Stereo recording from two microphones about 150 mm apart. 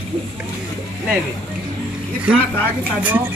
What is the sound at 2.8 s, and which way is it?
Speech, 10° right (ahead or behind).